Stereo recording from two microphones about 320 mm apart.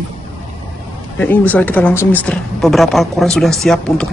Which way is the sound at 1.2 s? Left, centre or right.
Centre.